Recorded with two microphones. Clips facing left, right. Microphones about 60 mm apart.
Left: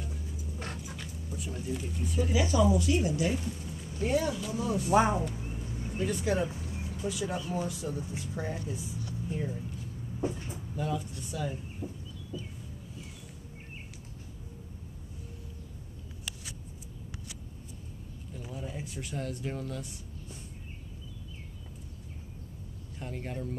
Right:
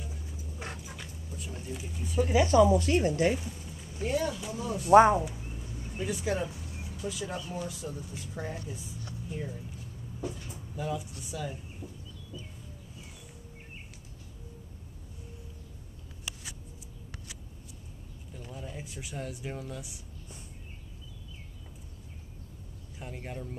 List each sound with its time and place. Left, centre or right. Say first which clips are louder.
0.0 s vehicle: left 2 dB; centre
1.3 s speech: left 4 dB; centre
2.3 s speech: right 5 dB; right
3.3 s speech: left 4 dB; centre
5.5 s a sound: left 3 dB; centre
5.9 s speech: left 2 dB; centre
6.5 s a sound: left 4 dB; left
7.1 s a woman's voice: left 3 dB; centre
10.2 s vehicle: left 4 dB; left
10.8 s speech: left 1 dB; centre
11.8 s chicken: left 6 dB; left
18.4 s speech: left 2 dB; centre
22.9 s speech: left 2 dB; centre